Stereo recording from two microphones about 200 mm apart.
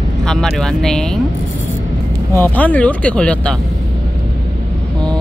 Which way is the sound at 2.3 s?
10° left (ahead or behind).